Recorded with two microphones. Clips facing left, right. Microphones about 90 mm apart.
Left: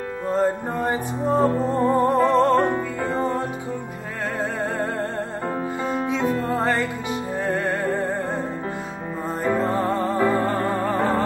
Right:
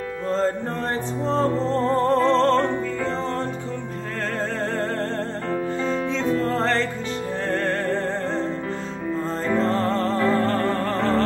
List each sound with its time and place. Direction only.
0.3 s music: 10° left (ahead or behind)
5.9 s music: 10° left (ahead or behind)
9.4 s music: 10° left (ahead or behind)